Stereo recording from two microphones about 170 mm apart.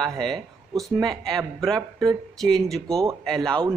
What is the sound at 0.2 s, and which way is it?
Speech, centre (ahead or behind).